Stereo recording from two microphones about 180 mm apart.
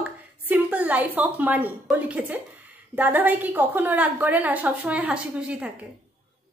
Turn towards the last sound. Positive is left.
turn(degrees=-5)  # may be behind; listen again after turning